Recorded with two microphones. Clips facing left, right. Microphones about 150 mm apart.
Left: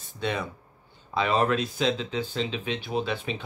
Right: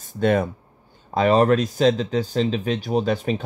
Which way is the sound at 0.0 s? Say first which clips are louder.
Right 10 dB; 50° right (ahead or behind).